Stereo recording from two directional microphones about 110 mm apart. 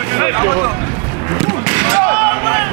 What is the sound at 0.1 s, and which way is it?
Speech, 25° right (ahead or behind).